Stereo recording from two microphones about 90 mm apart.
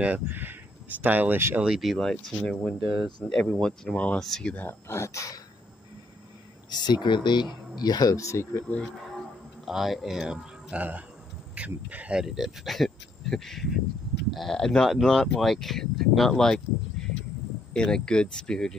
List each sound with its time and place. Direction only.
0.0 s speech: 20° right (ahead or behind)
1.7 s speech: centre (ahead or behind)
3.3 s speech: 10° left (ahead or behind)
4.6 s speech: 25° left (ahead or behind)
6.7 s speech: 55° left (ahead or behind); by 8.6 s 30° left (ahead or behind)
9.7 s speech: centre (ahead or behind)